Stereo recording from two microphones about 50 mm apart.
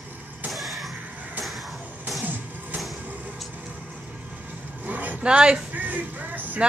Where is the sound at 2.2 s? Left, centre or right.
Right.